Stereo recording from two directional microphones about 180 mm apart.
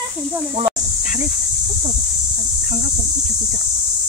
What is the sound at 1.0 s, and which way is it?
Dog, 50° left (ahead or behind).